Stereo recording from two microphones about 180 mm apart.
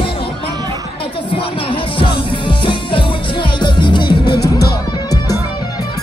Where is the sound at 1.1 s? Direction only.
30° left (ahead or behind).